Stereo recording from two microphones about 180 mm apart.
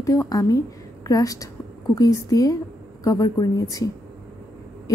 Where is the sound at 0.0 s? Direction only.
20° left (ahead or behind).